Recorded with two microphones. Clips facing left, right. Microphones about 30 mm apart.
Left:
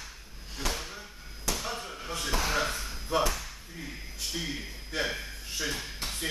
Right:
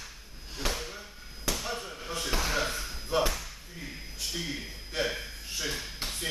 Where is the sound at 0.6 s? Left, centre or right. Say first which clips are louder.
Even; centre.